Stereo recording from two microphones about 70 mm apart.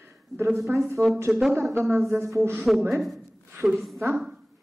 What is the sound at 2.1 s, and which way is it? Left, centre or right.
Speech, right.